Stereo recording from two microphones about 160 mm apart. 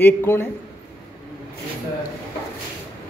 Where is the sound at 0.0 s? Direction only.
15° left (ahead or behind).